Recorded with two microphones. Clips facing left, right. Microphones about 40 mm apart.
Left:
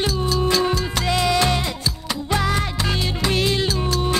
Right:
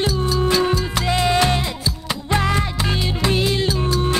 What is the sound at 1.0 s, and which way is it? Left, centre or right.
Music, right.